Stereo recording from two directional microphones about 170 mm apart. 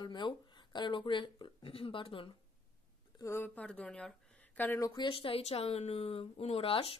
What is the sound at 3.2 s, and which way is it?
Speech, 15° left (ahead or behind).